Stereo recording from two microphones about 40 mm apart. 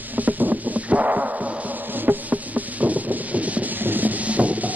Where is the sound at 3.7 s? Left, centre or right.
Right.